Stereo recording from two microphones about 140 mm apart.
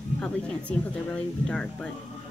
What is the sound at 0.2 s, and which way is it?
Speech, 10° left (ahead or behind).